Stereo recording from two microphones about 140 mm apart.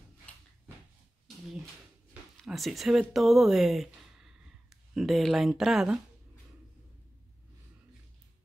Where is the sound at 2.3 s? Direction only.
Centre (ahead or behind).